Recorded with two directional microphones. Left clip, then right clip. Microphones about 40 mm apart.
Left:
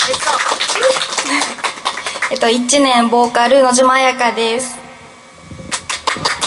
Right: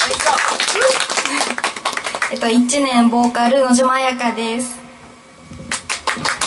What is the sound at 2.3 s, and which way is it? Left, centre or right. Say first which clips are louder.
A woman's voice: left 5 dB; left.